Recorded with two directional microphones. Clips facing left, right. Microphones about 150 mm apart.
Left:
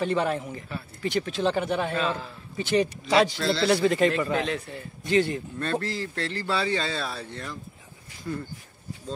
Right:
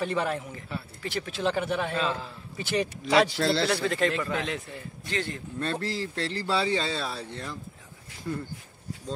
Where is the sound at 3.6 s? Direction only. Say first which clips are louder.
Left 5 dB; 5° left (ahead or behind).